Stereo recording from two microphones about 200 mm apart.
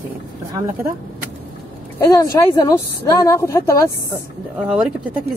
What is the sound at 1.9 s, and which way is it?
A woman's voice, 15° left (ahead or behind).